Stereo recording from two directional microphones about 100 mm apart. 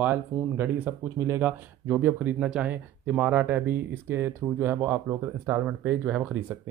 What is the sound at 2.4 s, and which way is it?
Speech, 5° right (ahead or behind).